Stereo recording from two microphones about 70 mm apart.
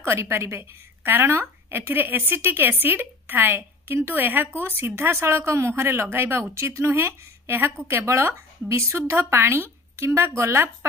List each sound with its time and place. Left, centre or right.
0.0 s a woman's voice: right